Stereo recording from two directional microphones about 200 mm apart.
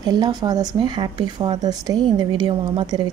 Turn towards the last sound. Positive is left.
turn(degrees=-20)  # may be behind; listen again after turning